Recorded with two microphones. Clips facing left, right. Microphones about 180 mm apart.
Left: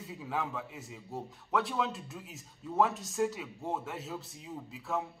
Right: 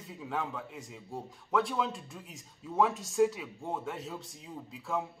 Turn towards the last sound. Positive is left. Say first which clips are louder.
# right 1 dB
turn(degrees=0)  # may be behind; listen again after turning